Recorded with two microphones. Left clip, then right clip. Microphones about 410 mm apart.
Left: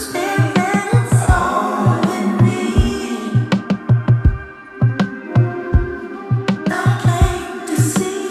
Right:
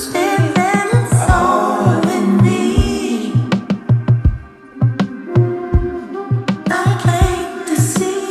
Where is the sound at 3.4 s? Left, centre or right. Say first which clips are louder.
Even; centre.